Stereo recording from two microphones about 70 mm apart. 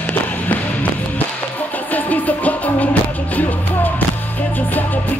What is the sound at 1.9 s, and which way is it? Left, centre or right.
Music, left.